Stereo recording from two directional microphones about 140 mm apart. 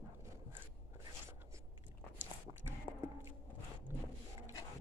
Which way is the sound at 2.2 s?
15° right (ahead or behind).